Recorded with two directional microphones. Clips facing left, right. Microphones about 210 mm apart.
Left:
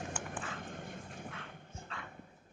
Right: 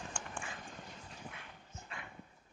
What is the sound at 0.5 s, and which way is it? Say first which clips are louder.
Dog: left 5 dB; 55° left (ahead or behind).